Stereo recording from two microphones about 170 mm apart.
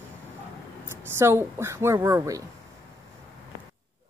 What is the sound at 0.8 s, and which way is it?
A woman's voice, 15° right (ahead or behind).